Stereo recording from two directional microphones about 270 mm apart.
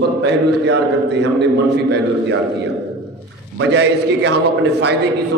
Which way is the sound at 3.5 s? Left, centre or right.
Right.